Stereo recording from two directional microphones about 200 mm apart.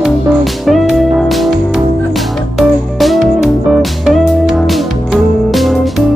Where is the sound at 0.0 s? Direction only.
Centre (ahead or behind).